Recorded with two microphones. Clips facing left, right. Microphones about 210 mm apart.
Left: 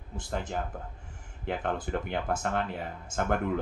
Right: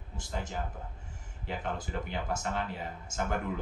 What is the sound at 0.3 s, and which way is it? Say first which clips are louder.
Speech: left 4 dB; 55° left (ahead or behind).